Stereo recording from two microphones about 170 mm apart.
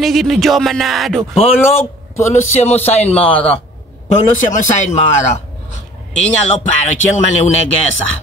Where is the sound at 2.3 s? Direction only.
40° left (ahead or behind).